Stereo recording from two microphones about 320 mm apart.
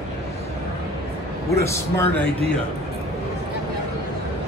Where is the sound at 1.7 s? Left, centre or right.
Centre.